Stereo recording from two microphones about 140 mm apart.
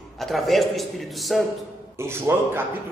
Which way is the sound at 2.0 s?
15° right (ahead or behind).